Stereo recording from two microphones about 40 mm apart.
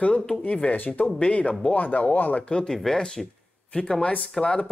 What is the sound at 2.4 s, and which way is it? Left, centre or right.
Speech, left.